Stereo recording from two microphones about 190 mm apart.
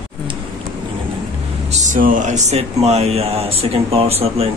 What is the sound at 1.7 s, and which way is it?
Speech, 40° right (ahead or behind).